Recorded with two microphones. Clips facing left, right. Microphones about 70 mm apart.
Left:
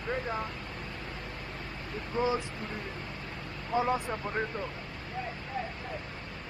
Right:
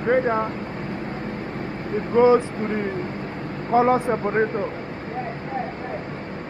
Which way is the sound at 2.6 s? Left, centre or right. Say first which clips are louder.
Right 14 dB; right.